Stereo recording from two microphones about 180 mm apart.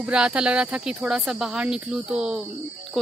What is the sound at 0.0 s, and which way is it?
Speech, 5° right (ahead or behind).